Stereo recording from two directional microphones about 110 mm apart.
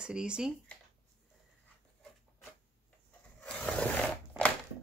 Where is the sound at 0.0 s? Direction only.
10° right (ahead or behind).